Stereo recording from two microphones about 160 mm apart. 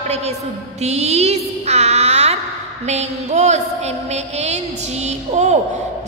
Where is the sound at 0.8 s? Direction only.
45° right (ahead or behind).